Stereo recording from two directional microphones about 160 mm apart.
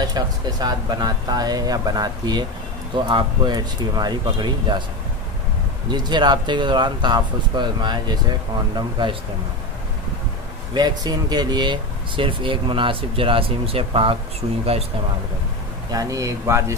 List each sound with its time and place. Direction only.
0.0 s speech: 25° right (ahead or behind)
5.9 s speech: 25° right (ahead or behind)
10.7 s speech: 25° right (ahead or behind)
15.9 s speech: 20° right (ahead or behind)